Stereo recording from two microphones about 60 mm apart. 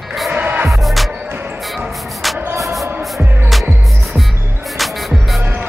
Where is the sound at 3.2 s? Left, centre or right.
Right.